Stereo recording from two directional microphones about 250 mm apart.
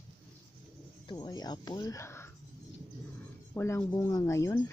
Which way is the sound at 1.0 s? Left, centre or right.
Centre.